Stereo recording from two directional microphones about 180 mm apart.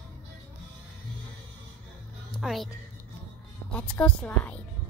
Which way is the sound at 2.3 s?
Centre (ahead or behind).